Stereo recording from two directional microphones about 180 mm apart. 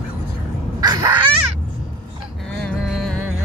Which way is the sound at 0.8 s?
20° right (ahead or behind).